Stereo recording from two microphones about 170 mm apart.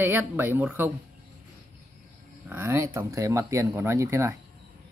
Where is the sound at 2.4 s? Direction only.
15° right (ahead or behind).